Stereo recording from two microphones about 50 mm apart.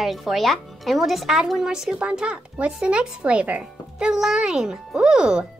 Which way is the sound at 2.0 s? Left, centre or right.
Right.